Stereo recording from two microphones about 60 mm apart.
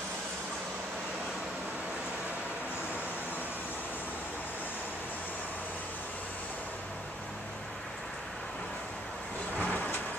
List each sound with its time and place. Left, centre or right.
9.6 s vehicle: left